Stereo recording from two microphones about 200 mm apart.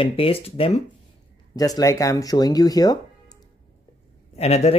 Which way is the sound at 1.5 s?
20° left (ahead or behind).